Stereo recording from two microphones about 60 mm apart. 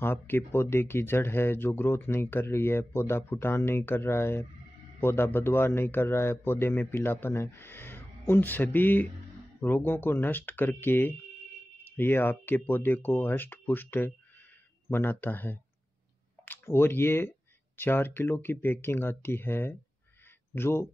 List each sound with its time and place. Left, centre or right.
0.0 s speech: left
16.6 s a man's voice: left